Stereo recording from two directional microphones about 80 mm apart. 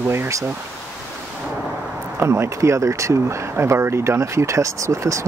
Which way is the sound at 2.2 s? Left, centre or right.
Right.